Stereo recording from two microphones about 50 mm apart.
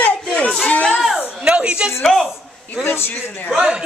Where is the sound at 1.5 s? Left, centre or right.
Right.